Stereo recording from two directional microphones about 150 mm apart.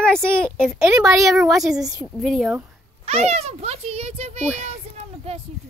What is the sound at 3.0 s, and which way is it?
A child's voice, 45° right (ahead or behind).